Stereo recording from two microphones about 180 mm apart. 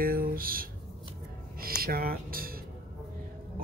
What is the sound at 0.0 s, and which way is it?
Speech, 55° right (ahead or behind).